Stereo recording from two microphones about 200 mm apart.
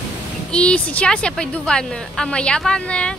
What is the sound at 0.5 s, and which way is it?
A woman's voice, 5° left (ahead or behind).